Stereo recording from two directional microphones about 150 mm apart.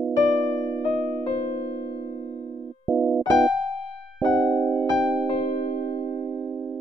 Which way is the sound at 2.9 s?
5° left (ahead or behind).